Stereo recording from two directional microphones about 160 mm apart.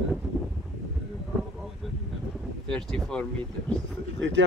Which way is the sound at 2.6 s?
5° left (ahead or behind).